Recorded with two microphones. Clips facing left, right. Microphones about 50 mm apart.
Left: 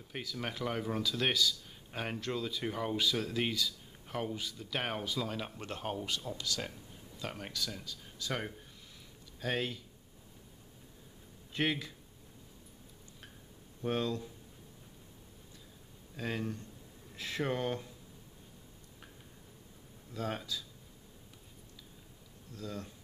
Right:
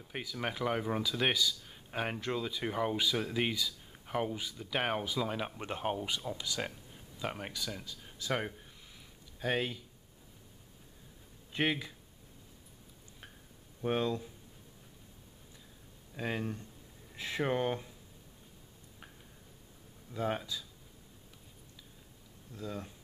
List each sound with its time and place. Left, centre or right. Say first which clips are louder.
0.1 s speech: right 2 dB; centre
11.5 s speech: right 1 dB; centre
13.7 s speech: right 2 dB; centre
16.2 s speech: right 1 dB; centre
20.2 s speech: right 3 dB; centre
22.5 s speech: right 1 dB; centre